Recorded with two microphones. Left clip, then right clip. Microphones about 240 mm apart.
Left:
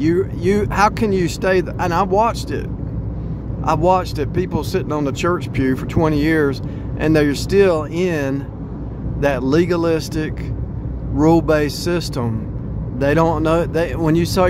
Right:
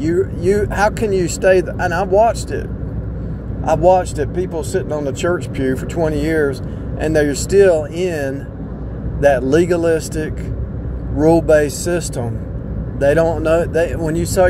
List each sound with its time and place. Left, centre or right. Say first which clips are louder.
0.0 s speech: right 1 dB; centre
3.6 s speech: right 3 dB; centre